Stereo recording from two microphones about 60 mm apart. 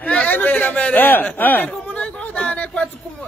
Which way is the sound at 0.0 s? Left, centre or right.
Left.